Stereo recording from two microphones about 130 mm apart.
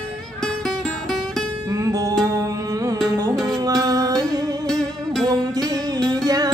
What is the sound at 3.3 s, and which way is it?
Music, centre (ahead or behind).